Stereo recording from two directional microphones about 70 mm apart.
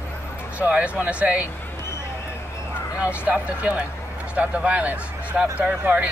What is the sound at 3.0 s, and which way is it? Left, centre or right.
Speech, right.